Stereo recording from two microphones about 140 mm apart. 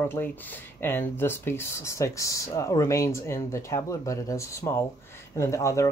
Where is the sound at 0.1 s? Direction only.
15° left (ahead or behind).